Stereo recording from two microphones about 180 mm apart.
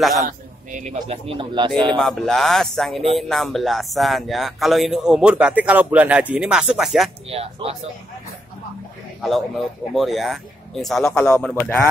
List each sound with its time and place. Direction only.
0.2 s speech: 45° right (ahead or behind); by 1.7 s 25° right (ahead or behind)
2.0 s speech: 5° left (ahead or behind)
7.2 s speech: 35° right (ahead or behind)
9.2 s a man's voice: centre (ahead or behind)